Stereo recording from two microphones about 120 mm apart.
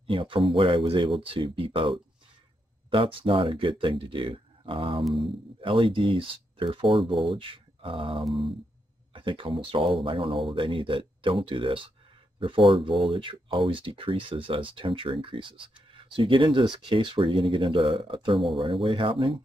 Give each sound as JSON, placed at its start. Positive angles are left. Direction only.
{"t": 0.0, "sound": "speech", "side_deg": -45}